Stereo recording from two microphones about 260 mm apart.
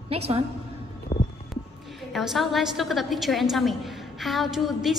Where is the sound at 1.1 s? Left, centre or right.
Centre.